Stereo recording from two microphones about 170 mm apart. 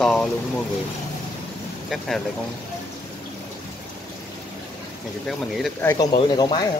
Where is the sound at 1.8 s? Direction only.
Centre (ahead or behind).